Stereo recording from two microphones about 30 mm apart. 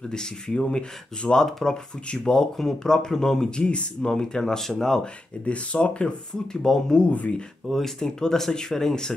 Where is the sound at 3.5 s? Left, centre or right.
Left; by 5.1 s centre.